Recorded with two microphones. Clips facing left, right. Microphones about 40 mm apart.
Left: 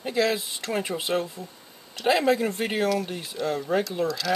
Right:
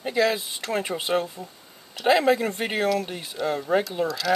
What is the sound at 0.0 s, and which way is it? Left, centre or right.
Speech, centre.